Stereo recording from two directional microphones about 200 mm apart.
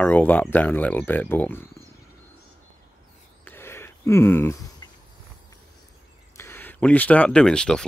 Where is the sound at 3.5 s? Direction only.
10° left (ahead or behind).